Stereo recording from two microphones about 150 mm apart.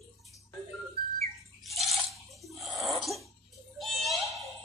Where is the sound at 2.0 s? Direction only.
Centre (ahead or behind).